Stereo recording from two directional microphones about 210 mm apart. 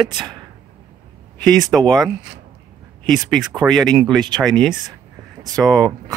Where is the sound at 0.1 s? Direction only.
20° right (ahead or behind).